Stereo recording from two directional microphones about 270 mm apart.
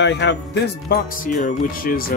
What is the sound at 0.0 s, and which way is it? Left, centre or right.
Speech, left.